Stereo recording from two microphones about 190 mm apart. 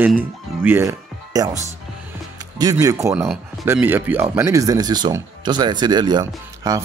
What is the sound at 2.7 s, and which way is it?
A man's voice, 15° right (ahead or behind).